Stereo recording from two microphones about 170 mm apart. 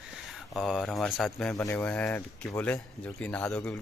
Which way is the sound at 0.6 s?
Centre (ahead or behind).